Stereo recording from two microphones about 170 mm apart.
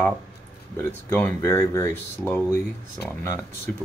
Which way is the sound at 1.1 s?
15° left (ahead or behind).